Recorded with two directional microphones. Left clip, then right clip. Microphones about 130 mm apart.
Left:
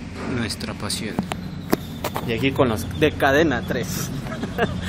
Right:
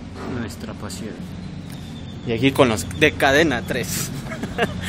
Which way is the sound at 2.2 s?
45° right (ahead or behind).